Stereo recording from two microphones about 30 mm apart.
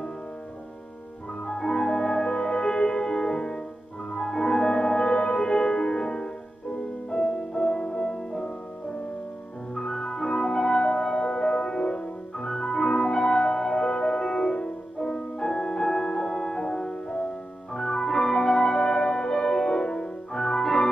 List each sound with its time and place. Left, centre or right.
1.5 s music: left
9.8 s music: left